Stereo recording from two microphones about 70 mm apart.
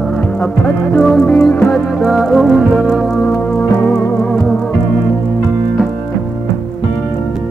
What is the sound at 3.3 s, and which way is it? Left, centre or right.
Music, left.